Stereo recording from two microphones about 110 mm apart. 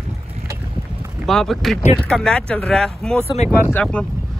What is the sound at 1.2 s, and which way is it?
Speech, 5° left (ahead or behind).